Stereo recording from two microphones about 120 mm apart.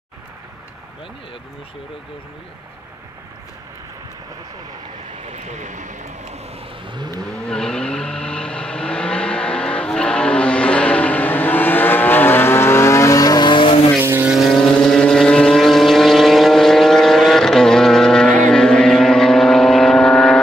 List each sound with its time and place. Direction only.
5.3 s speech: 85° right
7.2 s vehicle: 5° left (ahead or behind); by 13.7 s 45° left (ahead or behind)
13.9 s vehicle: 15° right (ahead or behind)
14.3 s vehicle: centre (ahead or behind)